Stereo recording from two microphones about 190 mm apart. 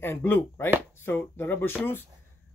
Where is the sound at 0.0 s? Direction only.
10° left (ahead or behind).